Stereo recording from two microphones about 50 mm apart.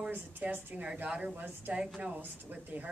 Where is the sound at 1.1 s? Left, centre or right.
Centre.